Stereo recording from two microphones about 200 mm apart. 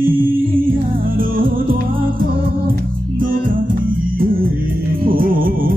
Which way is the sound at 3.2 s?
45° right (ahead or behind).